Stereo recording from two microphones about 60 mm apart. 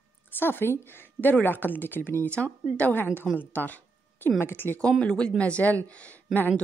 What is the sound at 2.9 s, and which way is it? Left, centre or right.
A woman's voice, left.